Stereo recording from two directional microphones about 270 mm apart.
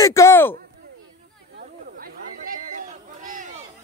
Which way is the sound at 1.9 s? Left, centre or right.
Right.